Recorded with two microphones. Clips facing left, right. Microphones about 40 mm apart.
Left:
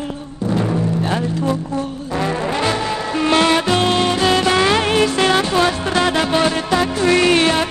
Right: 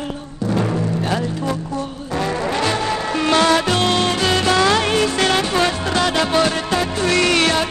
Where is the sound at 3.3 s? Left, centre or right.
Left.